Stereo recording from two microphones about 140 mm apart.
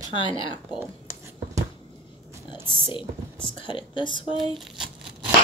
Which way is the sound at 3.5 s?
35° left (ahead or behind).